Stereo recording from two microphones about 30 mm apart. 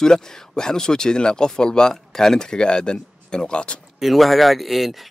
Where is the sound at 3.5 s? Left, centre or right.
Left.